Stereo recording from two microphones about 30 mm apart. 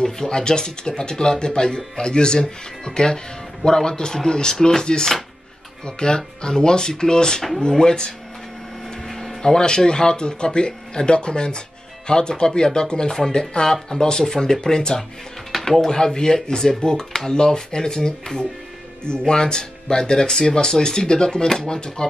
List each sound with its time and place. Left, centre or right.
0.0 s speech: left
9.4 s speech: left